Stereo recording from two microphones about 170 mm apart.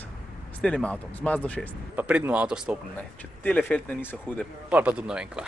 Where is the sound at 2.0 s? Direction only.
10° right (ahead or behind).